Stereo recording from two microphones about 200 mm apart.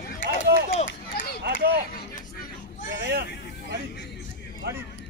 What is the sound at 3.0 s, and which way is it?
Speech, 55° right (ahead or behind).